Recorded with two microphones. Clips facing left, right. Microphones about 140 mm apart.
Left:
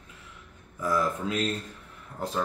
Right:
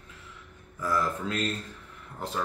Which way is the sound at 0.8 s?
15° left (ahead or behind).